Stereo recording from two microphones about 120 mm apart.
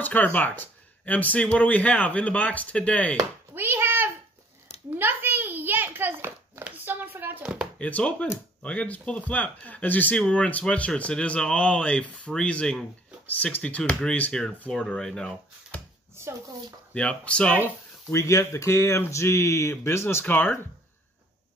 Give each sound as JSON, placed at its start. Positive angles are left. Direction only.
{"t": 0.0, "sound": "speech", "side_deg": 15}
{"t": 3.5, "sound": "a sound", "side_deg": -20}
{"t": 7.8, "sound": "speech", "side_deg": 10}
{"t": 16.2, "sound": "speech", "side_deg": -20}
{"t": 16.9, "sound": "speech", "side_deg": 10}
{"t": 18.1, "sound": "speech", "side_deg": 25}